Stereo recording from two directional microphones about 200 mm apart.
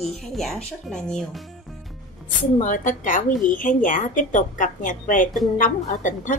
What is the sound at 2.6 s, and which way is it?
A woman's voice, 40° left (ahead or behind).